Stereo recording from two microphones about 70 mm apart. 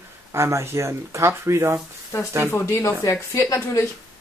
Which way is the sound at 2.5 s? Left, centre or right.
Left.